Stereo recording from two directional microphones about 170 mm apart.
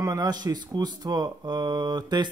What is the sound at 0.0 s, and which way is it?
Speech, 20° right (ahead or behind).